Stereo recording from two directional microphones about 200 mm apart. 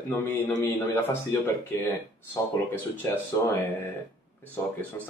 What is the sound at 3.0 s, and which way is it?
Speech, 15° left (ahead or behind).